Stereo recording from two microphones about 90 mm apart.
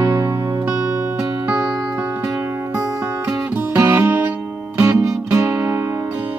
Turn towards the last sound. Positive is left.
turn(degrees=-30)  # may be behind; listen again after turning